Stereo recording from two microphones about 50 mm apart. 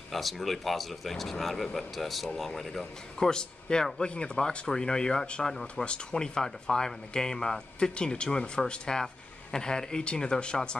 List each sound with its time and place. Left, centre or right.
0.1 s speech: centre